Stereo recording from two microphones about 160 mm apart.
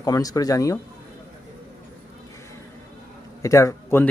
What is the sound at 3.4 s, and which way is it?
Speech, 20° left (ahead or behind).